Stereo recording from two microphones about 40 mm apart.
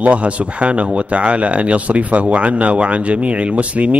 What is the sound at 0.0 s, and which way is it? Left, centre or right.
Speech, right.